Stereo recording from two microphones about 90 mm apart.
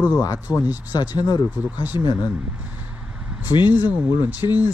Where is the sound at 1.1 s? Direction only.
50° left (ahead or behind).